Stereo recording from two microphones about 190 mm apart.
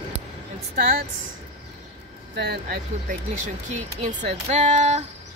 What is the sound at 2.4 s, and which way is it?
Speech, 55° right (ahead or behind).